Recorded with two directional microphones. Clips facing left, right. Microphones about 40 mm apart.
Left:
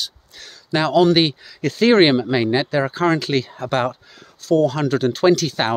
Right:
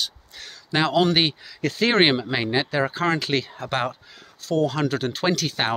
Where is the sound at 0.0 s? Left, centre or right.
Right.